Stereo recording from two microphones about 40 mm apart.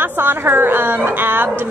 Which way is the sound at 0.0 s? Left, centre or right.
Right.